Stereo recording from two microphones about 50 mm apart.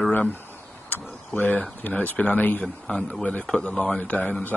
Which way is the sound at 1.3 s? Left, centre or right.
Left.